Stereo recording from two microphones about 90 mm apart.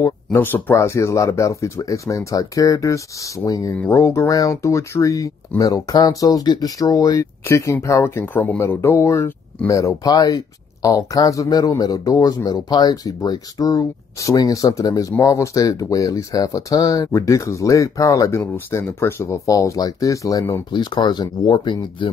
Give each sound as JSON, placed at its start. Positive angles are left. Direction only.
{"t": 0.3, "sound": "speech", "side_deg": 20}
{"t": 7.4, "sound": "speech", "side_deg": 30}
{"t": 20.7, "sound": "speech", "side_deg": 55}